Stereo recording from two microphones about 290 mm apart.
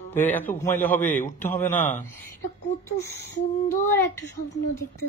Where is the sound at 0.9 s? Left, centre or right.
Left.